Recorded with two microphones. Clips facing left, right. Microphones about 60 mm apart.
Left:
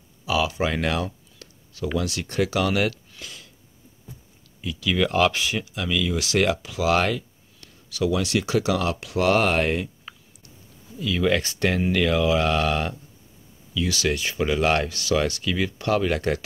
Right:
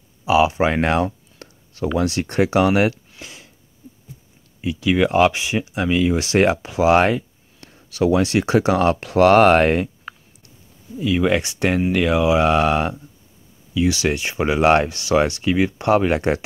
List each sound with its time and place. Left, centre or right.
0.2 s speech: right
4.6 s speech: right
11.0 s speech: right